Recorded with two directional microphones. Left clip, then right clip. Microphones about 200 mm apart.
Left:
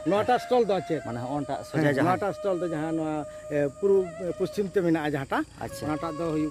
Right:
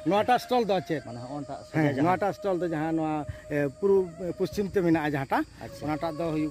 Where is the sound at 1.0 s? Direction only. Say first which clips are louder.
Left 6 dB; 30° left (ahead or behind).